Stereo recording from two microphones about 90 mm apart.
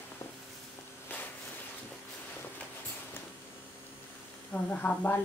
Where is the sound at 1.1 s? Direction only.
20° left (ahead or behind).